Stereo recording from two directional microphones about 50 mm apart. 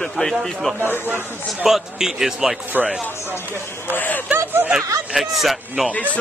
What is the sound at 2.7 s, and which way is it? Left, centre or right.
Speech, right.